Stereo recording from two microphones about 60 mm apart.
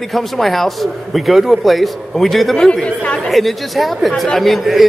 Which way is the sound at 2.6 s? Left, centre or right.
Centre.